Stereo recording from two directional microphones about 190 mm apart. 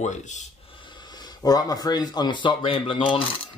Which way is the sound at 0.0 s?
40° left (ahead or behind).